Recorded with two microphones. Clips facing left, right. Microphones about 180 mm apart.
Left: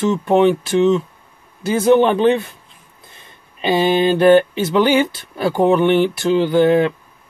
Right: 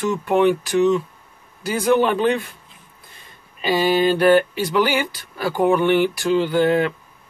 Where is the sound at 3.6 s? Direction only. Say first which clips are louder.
Left 2 dB; 25° left (ahead or behind).